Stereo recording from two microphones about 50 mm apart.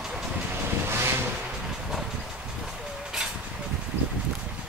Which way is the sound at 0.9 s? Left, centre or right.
Right.